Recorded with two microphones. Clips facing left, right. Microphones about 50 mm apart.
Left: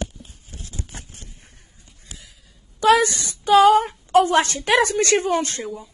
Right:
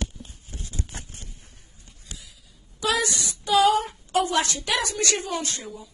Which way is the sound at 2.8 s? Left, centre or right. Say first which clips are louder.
Left 9 dB; left.